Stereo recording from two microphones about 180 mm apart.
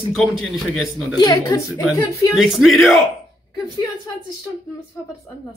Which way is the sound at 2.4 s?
Centre (ahead or behind).